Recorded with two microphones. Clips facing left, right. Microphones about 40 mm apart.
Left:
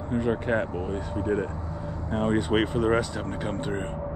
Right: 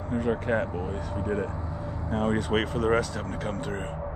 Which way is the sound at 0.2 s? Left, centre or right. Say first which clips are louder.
Left 1 dB; left.